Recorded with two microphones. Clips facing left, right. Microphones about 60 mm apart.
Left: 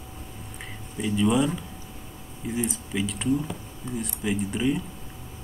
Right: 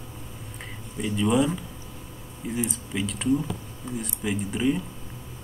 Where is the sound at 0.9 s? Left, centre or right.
Centre.